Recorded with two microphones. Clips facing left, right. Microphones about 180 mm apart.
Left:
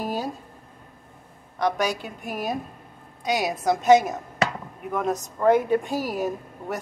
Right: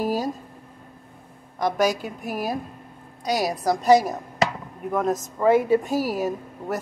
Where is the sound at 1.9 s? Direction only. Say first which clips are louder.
Right 4 dB; 40° right (ahead or behind).